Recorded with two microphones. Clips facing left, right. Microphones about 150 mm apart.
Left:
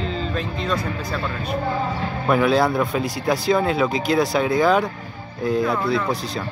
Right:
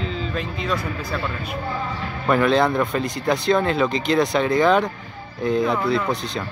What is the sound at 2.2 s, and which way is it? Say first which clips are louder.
A man's voice: even; 5° left (ahead or behind).